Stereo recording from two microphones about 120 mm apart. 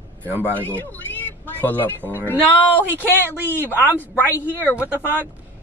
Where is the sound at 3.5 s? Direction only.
15° right (ahead or behind).